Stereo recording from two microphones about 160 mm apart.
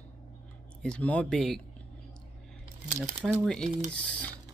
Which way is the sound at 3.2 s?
Centre (ahead or behind).